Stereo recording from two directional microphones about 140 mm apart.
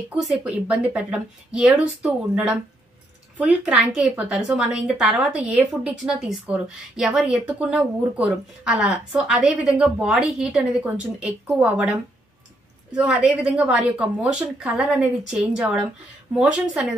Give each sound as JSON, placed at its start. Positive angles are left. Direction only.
{"t": 0.2, "sound": "a woman's voice", "side_deg": -5}
{"t": 12.9, "sound": "a woman's voice", "side_deg": -10}